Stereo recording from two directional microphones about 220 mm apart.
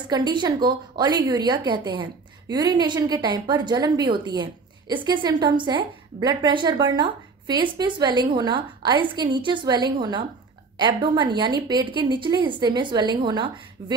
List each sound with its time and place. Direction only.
0.1 s a woman's voice: 20° right (ahead or behind)